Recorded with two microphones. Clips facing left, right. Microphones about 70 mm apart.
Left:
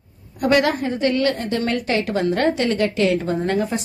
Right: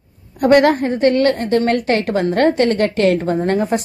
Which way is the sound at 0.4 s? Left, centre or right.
Right.